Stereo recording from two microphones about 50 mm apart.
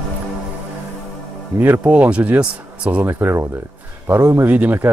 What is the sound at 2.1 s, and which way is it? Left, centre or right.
Speech, right.